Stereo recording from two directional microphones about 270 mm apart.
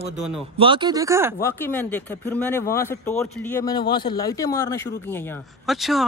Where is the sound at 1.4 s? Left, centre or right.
Centre.